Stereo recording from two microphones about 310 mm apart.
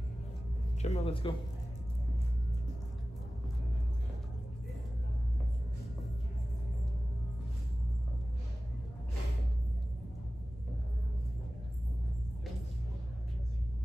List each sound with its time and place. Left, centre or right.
0.8 s speech: left